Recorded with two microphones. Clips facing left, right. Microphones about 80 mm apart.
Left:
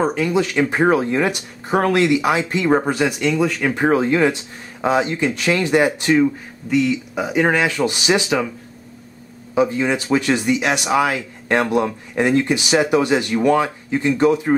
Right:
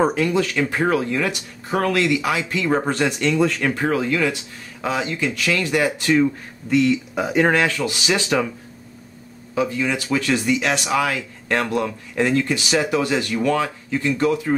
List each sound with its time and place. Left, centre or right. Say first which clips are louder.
0.0 s speech: right 1 dB; centre
0.3 s speech: left 2 dB; left
2.8 s speech: left 1 dB; centre
3.7 s speech: left 4 dB; left
6.1 s speech: left 2 dB; centre
7.7 s speech: left 4 dB; left
9.6 s speech: left 4 dB; left